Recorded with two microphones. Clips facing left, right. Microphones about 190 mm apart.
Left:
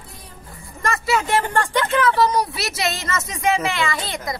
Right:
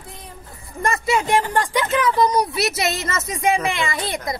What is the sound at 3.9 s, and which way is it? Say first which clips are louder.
Speech: right 2 dB; centre (ahead or behind).